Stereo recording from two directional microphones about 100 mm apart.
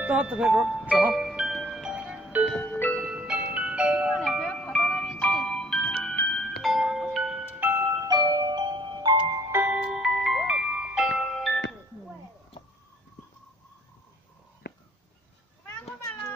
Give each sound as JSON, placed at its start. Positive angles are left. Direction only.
{"t": 0.0, "sound": "speech", "side_deg": -15}
{"t": 1.1, "sound": "music", "side_deg": -5}
{"t": 2.5, "sound": "music", "side_deg": 15}
{"t": 3.2, "sound": "music", "side_deg": -10}
{"t": 4.2, "sound": "music", "side_deg": 10}
{"t": 7.8, "sound": "music", "side_deg": -40}
{"t": 9.5, "sound": "music", "side_deg": -20}
{"t": 9.8, "sound": "music", "side_deg": -5}